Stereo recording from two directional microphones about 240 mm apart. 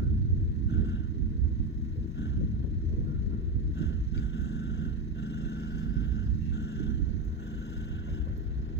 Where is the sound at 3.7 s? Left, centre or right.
Left.